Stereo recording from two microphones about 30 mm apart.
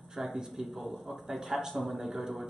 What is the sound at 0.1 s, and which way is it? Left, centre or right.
A man's voice, centre.